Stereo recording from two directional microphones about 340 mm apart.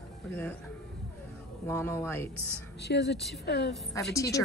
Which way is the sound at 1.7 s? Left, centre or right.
Centre.